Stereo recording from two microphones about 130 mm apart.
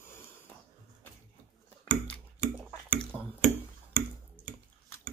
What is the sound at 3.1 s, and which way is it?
Tick-tock, 15° left (ahead or behind).